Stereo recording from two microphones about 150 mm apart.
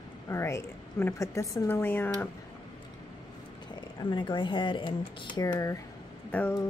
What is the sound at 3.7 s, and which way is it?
Speech, 30° left (ahead or behind).